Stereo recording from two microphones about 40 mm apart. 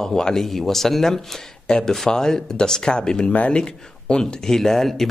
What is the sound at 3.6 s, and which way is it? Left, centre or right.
Speech, centre.